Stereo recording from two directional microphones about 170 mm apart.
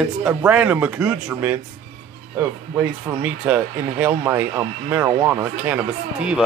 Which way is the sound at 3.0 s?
10° right (ahead or behind).